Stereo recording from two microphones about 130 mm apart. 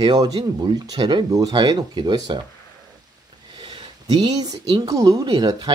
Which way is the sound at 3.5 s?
35° right (ahead or behind).